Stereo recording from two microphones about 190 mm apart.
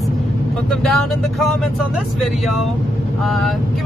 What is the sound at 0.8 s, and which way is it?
Speech, centre (ahead or behind).